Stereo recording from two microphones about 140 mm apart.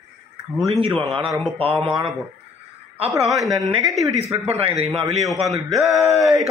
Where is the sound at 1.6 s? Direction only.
40° right (ahead or behind).